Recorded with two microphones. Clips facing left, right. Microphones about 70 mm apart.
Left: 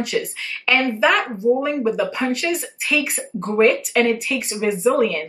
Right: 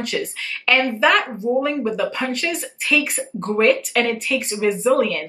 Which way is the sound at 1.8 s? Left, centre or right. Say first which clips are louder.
Left 2 dB; centre.